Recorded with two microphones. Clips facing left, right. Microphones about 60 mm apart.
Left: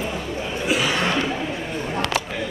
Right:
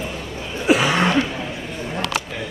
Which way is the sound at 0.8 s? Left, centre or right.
Right.